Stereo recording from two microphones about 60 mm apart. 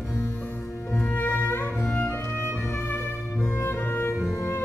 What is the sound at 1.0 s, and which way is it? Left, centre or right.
Music, left.